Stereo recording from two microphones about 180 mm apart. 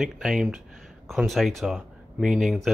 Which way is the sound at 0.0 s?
Centre (ahead or behind).